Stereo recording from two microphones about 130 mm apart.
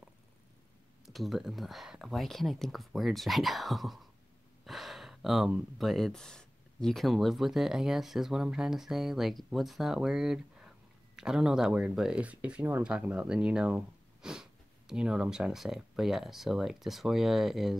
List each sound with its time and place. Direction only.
1.0 s speech: centre (ahead or behind)